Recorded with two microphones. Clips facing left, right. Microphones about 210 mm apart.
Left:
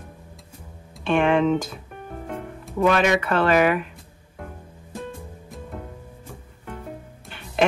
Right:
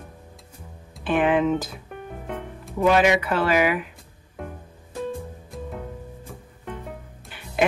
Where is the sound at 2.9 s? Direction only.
10° right (ahead or behind).